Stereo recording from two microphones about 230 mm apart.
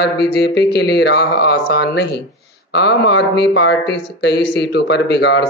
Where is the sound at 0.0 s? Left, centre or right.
Left.